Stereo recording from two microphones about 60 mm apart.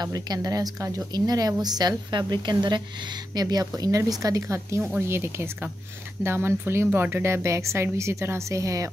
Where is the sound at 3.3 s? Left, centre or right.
Right.